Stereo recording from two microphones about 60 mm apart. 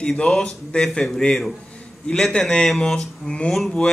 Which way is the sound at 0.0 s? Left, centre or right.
Centre.